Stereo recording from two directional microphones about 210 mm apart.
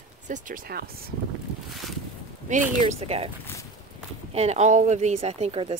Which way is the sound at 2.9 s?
30° right (ahead or behind).